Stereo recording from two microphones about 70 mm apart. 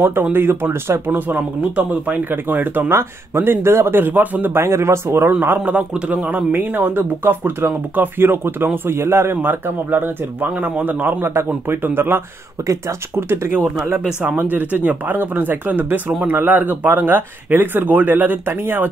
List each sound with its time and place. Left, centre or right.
0.0 s speech: right
4.6 s speech: right
5.7 s speech: right
12.6 s speech: right
13.3 s speech: right